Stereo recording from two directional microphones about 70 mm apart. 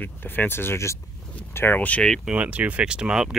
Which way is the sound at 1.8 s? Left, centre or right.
Left.